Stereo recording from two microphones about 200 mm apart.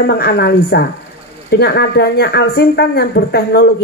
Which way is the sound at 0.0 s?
55° left (ahead or behind).